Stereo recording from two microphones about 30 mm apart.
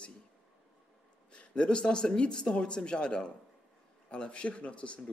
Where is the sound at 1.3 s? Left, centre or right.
Left.